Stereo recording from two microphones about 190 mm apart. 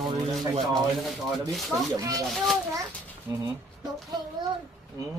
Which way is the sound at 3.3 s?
10° right (ahead or behind).